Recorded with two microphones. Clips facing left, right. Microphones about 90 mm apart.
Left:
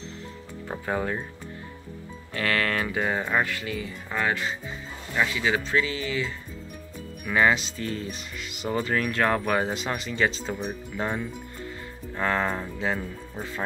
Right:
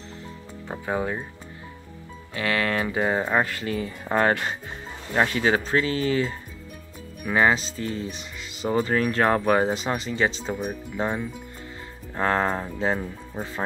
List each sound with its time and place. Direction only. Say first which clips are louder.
0.7 s speech: right 1 dB; 10° right (ahead or behind)
2.3 s speech: right 1 dB; 20° right (ahead or behind)
3.4 s speech: right 3 dB; 35° right (ahead or behind)
7.2 s speech: right 1 dB; 30° right (ahead or behind)
10.5 s speech: right 2 dB; 5° right (ahead or behind)
12.2 s speech: right 3 dB; 35° right (ahead or behind)
13.0 s speech: right 2 dB; 20° right (ahead or behind)